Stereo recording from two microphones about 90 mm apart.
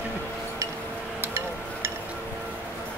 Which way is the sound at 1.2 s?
30° right (ahead or behind).